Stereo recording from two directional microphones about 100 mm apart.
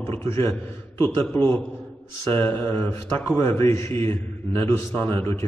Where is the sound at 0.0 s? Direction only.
25° left (ahead or behind).